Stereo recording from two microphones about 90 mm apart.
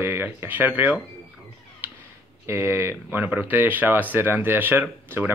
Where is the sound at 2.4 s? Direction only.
30° right (ahead or behind).